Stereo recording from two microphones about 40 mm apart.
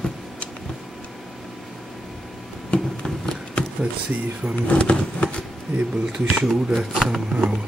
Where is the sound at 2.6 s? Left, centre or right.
Centre.